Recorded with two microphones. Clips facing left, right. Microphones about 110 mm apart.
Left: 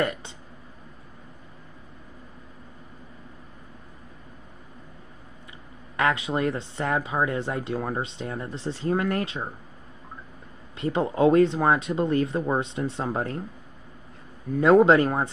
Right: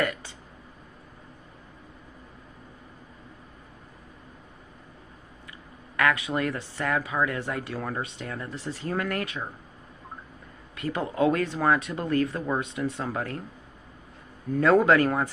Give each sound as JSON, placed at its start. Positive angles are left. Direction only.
{"t": 0.0, "sound": "a sound", "side_deg": 25}
{"t": 5.9, "sound": "speech", "side_deg": 25}
{"t": 10.8, "sound": "speech", "side_deg": 25}
{"t": 14.6, "sound": "speech", "side_deg": 25}